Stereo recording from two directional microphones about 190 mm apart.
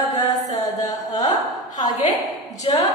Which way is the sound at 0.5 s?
20° left (ahead or behind).